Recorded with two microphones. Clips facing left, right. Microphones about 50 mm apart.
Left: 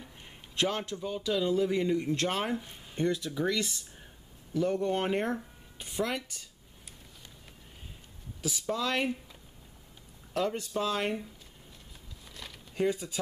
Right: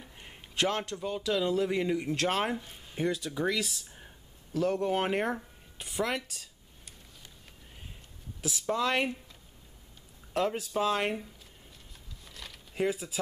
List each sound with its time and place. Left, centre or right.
0.0 s a sound: centre
0.6 s speech: centre
8.4 s speech: centre
8.7 s speech: centre
10.3 s speech: centre
12.3 s a sound: centre
12.7 s speech: centre